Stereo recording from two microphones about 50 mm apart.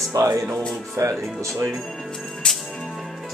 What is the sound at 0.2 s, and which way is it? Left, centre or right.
Speech, right.